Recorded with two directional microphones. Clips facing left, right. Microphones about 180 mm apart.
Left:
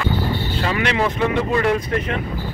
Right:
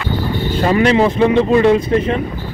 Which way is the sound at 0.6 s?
35° right (ahead or behind).